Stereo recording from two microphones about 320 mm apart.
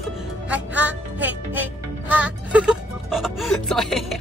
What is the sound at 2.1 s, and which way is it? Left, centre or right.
Speech, centre.